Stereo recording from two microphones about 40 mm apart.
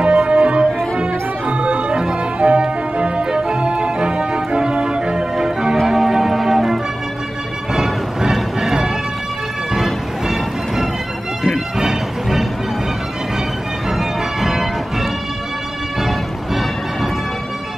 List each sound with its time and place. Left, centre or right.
0.0 s music: right; by 12.4 s centre
13.8 s music: centre